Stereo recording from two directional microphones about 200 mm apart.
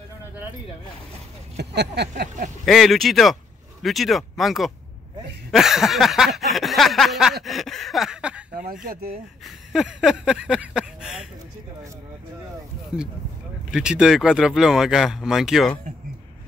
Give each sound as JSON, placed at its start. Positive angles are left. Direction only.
{"t": 1.6, "sound": "speech", "side_deg": -55}
{"t": 2.6, "sound": "speech", "side_deg": 0}
{"t": 8.8, "sound": "speech", "side_deg": -45}
{"t": 9.7, "sound": "speech", "side_deg": 0}
{"t": 12.9, "sound": "speech", "side_deg": -5}